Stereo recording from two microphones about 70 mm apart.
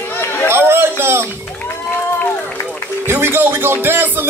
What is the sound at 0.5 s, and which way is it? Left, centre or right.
Chatter, right.